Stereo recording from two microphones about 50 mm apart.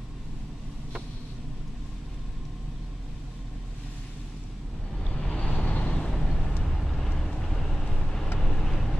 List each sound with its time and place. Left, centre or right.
5.1 s vehicle: centre
5.7 s vehicle: left
5.9 s vehicle: centre